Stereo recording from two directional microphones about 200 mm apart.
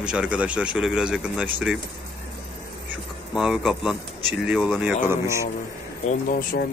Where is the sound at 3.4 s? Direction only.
Centre (ahead or behind).